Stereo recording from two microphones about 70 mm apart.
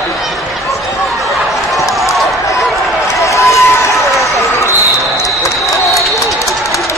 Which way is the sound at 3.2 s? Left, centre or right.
Left.